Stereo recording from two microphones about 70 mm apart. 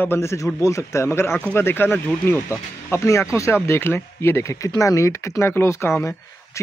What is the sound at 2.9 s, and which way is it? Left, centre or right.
Speech, left.